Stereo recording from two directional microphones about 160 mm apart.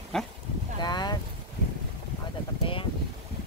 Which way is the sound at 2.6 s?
35° left (ahead or behind).